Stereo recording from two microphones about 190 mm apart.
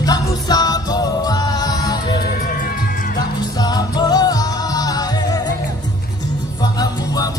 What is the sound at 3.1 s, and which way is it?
Music, 20° left (ahead or behind).